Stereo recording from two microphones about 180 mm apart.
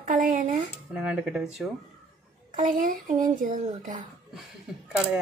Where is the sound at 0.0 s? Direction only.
50° right (ahead or behind).